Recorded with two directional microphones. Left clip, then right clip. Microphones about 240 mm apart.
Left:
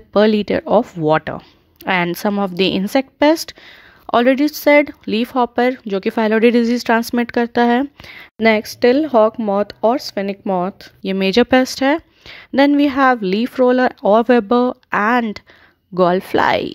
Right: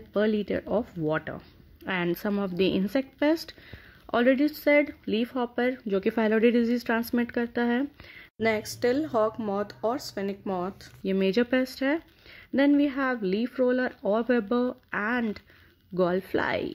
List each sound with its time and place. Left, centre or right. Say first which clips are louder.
0.1 s speech: left 12 dB; left
8.4 s speech: left 12 dB; left
11.1 s speech: left 11 dB; left